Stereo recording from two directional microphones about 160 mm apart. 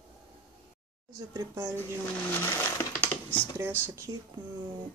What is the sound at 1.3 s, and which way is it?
Speech, 20° right (ahead or behind).